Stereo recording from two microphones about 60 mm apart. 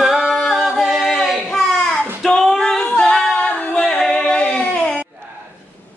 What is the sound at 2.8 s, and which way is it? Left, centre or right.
A capella, centre.